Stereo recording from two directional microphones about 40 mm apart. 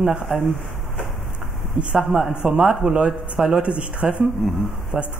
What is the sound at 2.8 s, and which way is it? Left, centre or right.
Speech, right.